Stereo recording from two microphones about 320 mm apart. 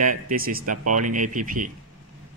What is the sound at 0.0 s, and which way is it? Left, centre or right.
Speech, right.